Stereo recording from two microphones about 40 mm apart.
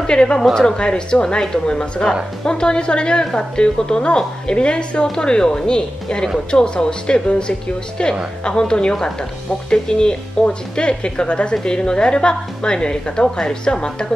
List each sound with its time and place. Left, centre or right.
0.0 s a woman's voice: left